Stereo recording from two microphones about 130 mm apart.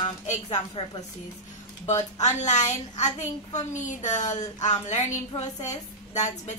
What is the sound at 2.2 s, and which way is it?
A woman's voice, 60° left (ahead or behind).